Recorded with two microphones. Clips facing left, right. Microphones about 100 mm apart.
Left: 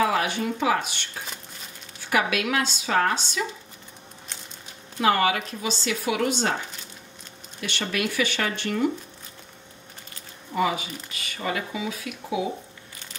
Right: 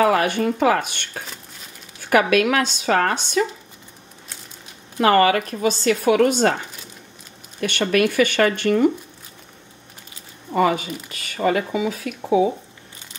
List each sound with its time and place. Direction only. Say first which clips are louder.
0.0 s speech: right 6 dB; 55° right (ahead or behind)
4.9 s speech: right 6 dB; 55° right (ahead or behind)
7.6 s speech: right 9 dB; 55° right (ahead or behind)
10.5 s speech: right 6 dB; 50° right (ahead or behind)